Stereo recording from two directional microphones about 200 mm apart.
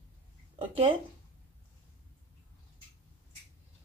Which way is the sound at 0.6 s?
25° right (ahead or behind).